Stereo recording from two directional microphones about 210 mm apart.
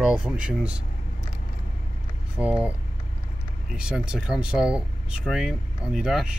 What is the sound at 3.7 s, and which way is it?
Speech, 5° right (ahead or behind).